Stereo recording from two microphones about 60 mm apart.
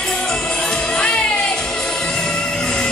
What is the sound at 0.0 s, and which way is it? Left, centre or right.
Music, centre.